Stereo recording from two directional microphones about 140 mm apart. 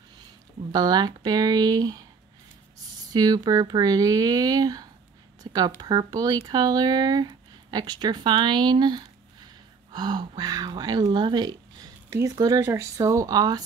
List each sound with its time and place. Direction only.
0.7 s speech: 30° right (ahead or behind)
3.1 s speech: 30° right (ahead or behind)
5.4 s a sound: 25° right (ahead or behind)
5.8 s speech: 30° right (ahead or behind)